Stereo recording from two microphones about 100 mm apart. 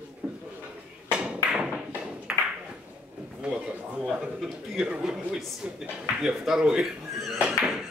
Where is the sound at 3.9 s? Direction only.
5° right (ahead or behind).